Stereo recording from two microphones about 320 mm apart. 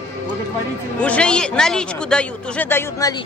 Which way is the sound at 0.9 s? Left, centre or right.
Centre.